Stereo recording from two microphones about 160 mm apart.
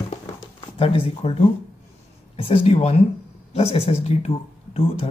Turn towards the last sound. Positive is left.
turn(degrees=35)  # may be behind; listen again after turning